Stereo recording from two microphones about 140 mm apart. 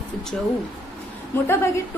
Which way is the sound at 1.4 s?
20° left (ahead or behind).